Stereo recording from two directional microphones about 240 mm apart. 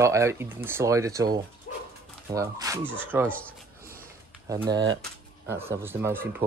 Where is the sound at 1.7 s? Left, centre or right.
Left.